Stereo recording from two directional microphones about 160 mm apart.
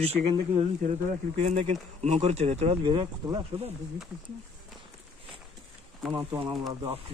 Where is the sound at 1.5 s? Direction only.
45° right (ahead or behind).